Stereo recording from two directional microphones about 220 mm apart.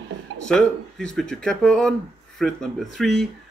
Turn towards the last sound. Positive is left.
turn(degrees=0)  # may be behind; listen again after turning